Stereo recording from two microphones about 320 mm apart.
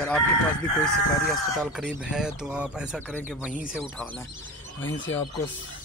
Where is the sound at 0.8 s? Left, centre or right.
Centre.